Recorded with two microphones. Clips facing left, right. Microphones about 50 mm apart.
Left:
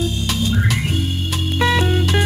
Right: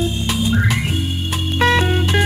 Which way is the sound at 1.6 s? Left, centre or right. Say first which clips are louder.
Right 2 dB; centre.